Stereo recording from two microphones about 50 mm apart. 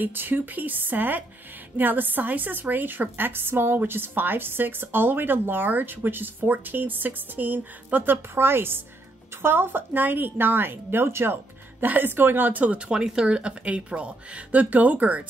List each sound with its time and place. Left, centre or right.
0.0 s a woman's voice: right
8.4 s a woman's voice: right
11.8 s a woman's voice: right